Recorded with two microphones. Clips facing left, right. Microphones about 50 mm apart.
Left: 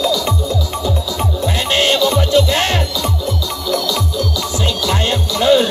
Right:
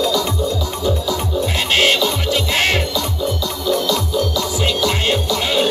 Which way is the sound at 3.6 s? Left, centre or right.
Centre.